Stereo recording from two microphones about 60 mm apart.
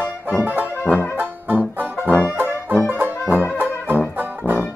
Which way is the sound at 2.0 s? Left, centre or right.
Left.